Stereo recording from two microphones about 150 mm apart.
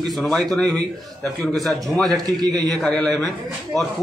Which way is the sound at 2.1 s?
25° right (ahead or behind).